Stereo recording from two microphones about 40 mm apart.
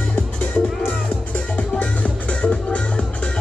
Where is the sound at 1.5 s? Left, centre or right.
Left.